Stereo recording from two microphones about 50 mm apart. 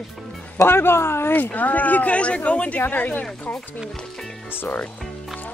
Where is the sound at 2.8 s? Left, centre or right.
Left.